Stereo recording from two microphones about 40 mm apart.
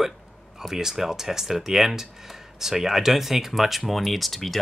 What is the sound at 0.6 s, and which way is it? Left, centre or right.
Speech, centre.